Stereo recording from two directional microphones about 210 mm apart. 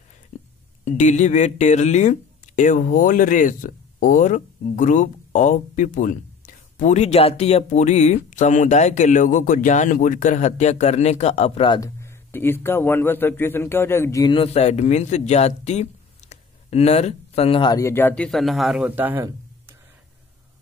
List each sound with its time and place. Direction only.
0.8 s speech: 35° left (ahead or behind); by 19.7 s 10° right (ahead or behind)